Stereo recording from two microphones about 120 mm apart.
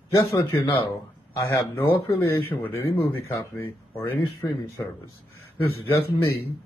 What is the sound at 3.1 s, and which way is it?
Speech, 20° left (ahead or behind).